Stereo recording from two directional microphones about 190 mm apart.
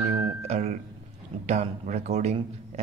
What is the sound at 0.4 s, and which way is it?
Music, 35° right (ahead or behind).